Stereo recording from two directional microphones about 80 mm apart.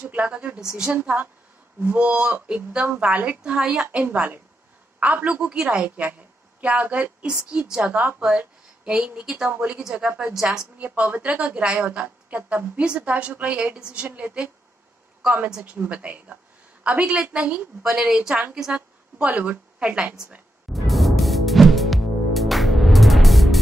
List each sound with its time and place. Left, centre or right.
0.0 s a woman's voice: centre
0.9 s a woman's voice: right; by 10.7 s centre
10.8 s a woman's voice: centre
15.5 s a woman's voice: centre
20.7 s music: centre